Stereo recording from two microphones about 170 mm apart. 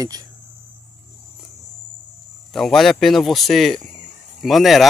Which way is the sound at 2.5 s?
Centre (ahead or behind).